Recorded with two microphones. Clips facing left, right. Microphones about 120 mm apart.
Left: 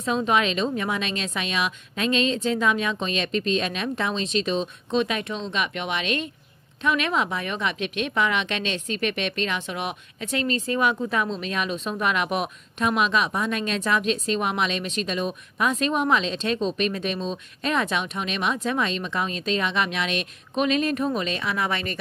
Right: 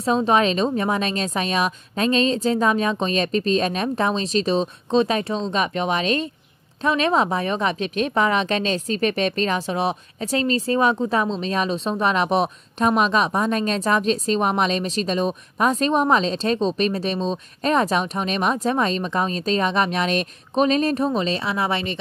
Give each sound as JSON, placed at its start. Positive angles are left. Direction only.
{"t": 0.0, "sound": "a woman's voice", "side_deg": -35}